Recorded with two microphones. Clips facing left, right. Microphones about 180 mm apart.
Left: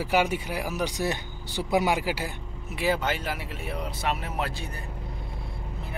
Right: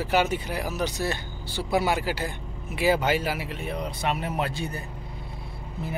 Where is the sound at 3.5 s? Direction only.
5° left (ahead or behind).